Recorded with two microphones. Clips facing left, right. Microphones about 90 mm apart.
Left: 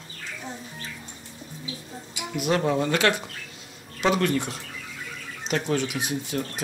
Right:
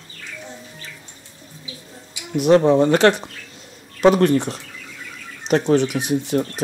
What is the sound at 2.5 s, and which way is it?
Speech, 30° right (ahead or behind).